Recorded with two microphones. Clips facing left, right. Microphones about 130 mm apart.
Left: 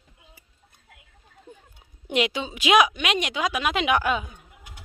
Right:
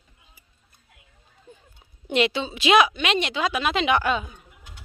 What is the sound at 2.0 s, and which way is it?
A woman's voice, 10° left (ahead or behind).